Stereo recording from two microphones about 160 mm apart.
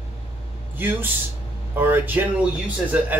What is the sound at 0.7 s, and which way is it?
Speech, 10° right (ahead or behind).